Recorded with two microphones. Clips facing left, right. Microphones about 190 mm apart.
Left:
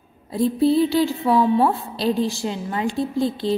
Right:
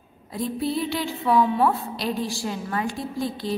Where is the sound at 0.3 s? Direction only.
30° left (ahead or behind).